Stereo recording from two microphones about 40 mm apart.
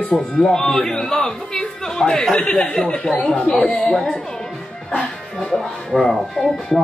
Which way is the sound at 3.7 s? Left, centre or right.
Left.